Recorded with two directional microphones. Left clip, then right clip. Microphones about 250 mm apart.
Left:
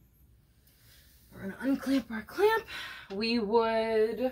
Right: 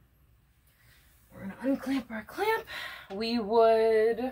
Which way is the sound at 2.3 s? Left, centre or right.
Right.